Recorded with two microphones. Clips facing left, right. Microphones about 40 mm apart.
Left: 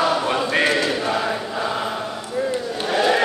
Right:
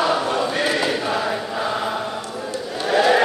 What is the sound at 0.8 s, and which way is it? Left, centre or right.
Chant, centre.